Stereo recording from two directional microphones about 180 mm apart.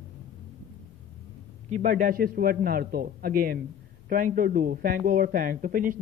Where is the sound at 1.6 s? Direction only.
45° right (ahead or behind).